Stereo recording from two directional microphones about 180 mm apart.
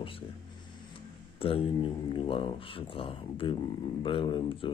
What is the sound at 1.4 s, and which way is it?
Speech, 30° left (ahead or behind).